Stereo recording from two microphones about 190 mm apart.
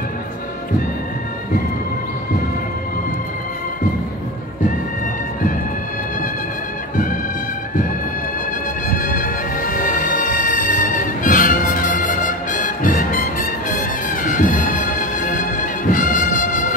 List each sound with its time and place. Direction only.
8.9 s music: 45° left (ahead or behind)